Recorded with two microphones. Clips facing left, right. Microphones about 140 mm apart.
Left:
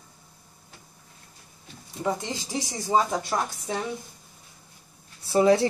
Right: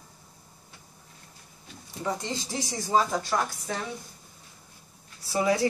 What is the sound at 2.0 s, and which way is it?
A woman's voice, 15° left (ahead or behind).